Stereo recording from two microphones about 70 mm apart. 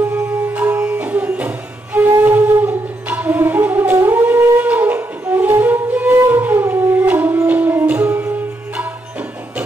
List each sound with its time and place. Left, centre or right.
0.1 s music: right